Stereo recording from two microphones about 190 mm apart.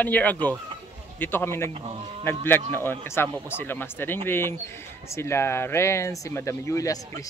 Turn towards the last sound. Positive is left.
turn(degrees=15)  # may be behind; listen again after turning